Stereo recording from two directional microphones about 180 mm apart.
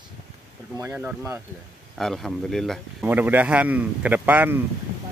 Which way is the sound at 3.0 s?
10° right (ahead or behind).